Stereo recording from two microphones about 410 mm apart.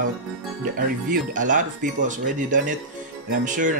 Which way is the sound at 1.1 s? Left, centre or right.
Centre.